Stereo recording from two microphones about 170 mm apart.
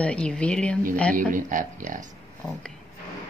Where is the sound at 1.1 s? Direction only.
50° right (ahead or behind).